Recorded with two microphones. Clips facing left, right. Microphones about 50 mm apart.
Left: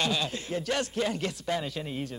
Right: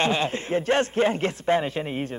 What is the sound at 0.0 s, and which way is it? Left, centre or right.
A man's voice, right.